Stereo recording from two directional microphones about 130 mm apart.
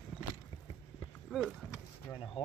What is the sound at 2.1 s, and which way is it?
Speech, 40° left (ahead or behind).